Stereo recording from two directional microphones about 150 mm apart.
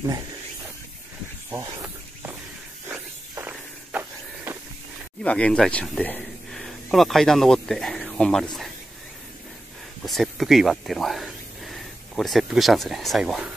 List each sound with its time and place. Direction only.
1.5 s snake: 20° right (ahead or behind)
2.9 s walk: 10° right (ahead or behind)
5.2 s speech: 10° left (ahead or behind)
10.0 s speech: centre (ahead or behind)